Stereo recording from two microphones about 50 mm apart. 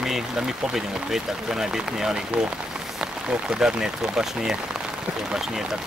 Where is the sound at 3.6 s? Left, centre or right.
Centre.